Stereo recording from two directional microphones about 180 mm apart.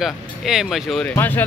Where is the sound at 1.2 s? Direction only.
10° left (ahead or behind).